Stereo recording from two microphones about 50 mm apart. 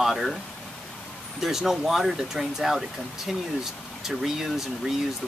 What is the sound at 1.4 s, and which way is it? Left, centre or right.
Speech, centre.